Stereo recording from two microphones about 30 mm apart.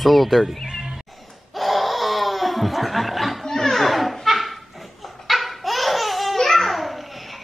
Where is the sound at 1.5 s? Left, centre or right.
Centre.